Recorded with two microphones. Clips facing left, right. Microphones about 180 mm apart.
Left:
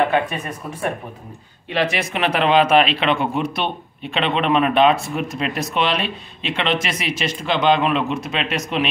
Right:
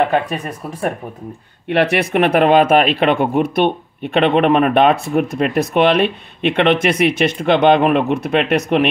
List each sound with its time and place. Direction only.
1.7 s speech: 60° right (ahead or behind)